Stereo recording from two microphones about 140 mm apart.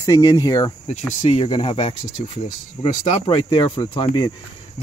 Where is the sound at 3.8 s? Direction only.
30° left (ahead or behind).